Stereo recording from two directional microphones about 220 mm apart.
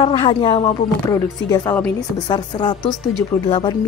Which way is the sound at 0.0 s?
25° left (ahead or behind).